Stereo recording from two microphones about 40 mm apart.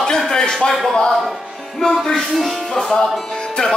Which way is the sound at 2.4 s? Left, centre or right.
Centre.